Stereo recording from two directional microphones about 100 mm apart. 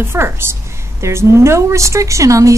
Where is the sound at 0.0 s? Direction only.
25° right (ahead or behind).